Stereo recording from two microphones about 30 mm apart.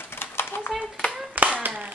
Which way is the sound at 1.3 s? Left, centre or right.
Right.